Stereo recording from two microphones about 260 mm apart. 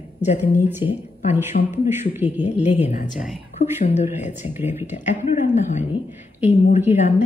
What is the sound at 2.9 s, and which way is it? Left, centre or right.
A woman's voice, left.